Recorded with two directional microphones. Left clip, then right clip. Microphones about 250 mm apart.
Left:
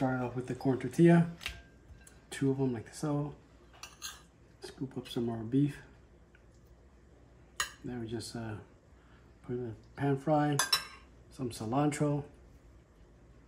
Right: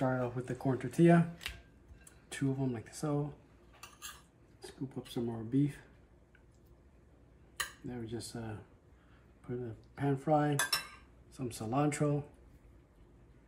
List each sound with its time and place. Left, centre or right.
0.0 s speech: centre
4.6 s speech: centre
7.5 s speech: centre